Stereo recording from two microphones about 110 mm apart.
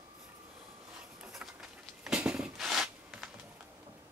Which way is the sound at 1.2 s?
5° right (ahead or behind).